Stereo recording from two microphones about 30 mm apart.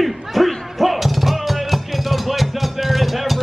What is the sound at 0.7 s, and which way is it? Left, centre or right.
Music, centre.